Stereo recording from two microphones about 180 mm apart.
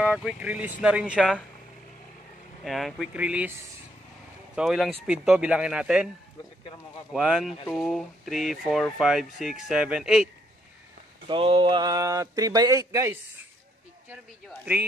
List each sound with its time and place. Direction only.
0.0 s speech: 5° right (ahead or behind)
2.6 s speech: centre (ahead or behind)
4.6 s speech: 5° right (ahead or behind)
7.1 s speech: 5° right (ahead or behind)
11.2 s speech: 30° right (ahead or behind)